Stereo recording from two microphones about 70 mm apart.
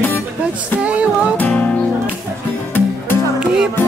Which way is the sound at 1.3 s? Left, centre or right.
Left.